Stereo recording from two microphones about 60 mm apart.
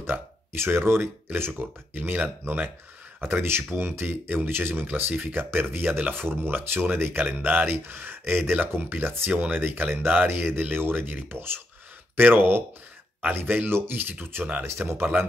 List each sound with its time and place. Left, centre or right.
0.0 s speech: right
14.6 s speech: right